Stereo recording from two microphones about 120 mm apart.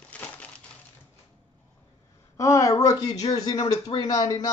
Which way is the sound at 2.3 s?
25° left (ahead or behind).